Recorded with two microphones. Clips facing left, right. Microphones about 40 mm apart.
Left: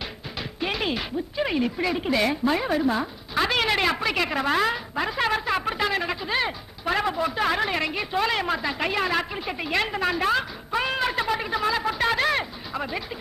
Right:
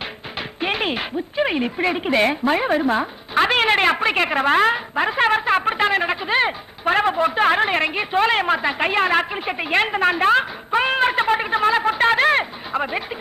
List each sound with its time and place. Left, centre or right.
0.4 s speech: right